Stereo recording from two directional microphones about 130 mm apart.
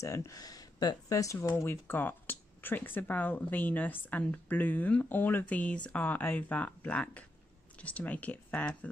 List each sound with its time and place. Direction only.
0.0 s speech: 25° left (ahead or behind)